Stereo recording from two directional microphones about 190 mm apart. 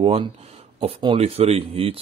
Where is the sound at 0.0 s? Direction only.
30° right (ahead or behind).